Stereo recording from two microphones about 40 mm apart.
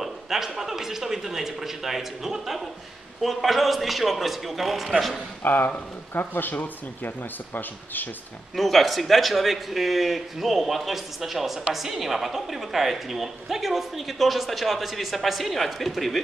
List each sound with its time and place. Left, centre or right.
0.0 s a man's voice: centre
5.4 s speech: left
8.5 s a woman's voice: centre